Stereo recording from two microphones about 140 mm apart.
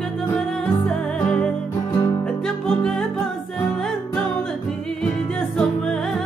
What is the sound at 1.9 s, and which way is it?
Music, 20° left (ahead or behind).